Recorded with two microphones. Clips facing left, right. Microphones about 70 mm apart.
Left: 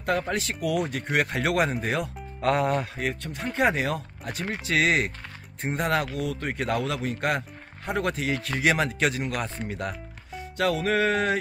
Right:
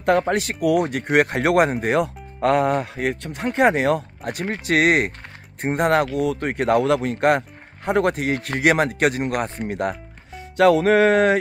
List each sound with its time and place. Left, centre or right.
0.3 s speech: right